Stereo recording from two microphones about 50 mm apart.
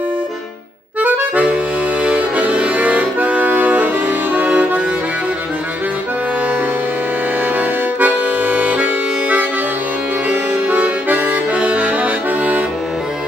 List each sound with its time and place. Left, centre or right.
1.0 s accordion: right
7.5 s accordion: right
10.3 s music: right